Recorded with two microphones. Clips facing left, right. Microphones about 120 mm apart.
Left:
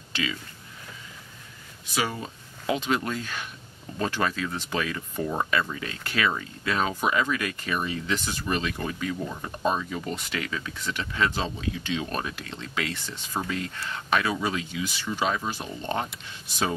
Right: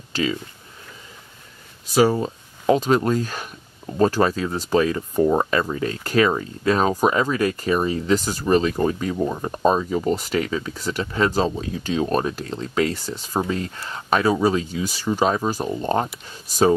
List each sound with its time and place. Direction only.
0.1 s speech: 35° right (ahead or behind)
1.9 s speech: 35° right (ahead or behind)